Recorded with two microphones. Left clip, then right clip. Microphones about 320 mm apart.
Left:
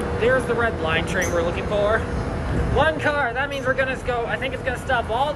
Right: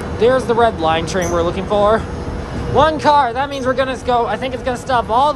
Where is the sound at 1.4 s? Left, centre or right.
Right.